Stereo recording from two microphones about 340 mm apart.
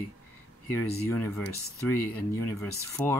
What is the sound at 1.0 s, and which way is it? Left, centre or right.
Speech, centre.